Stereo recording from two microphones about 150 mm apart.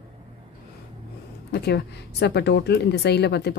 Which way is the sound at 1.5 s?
90° left.